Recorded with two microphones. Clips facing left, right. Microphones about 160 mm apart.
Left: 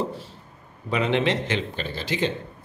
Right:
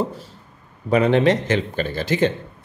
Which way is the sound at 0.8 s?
45° right (ahead or behind).